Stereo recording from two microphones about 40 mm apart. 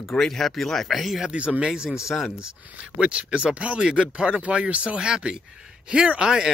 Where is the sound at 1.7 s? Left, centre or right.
Centre.